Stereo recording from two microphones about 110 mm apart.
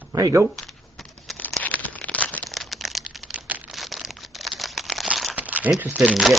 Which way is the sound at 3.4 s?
15° right (ahead or behind).